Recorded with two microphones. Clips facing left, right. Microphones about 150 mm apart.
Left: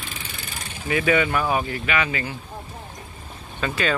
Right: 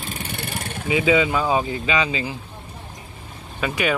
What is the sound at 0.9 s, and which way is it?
Speech, 15° right (ahead or behind).